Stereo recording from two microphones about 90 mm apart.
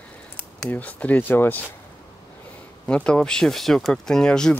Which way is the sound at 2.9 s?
10° left (ahead or behind).